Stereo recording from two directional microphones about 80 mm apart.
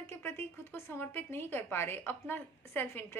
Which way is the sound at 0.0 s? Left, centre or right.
Left.